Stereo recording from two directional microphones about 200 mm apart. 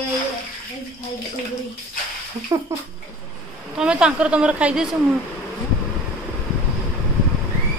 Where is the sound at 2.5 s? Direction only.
20° right (ahead or behind).